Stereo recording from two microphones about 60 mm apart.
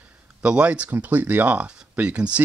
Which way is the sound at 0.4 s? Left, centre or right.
Centre.